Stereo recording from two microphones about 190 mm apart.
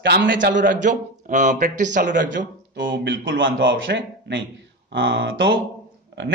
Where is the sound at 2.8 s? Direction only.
75° right (ahead or behind).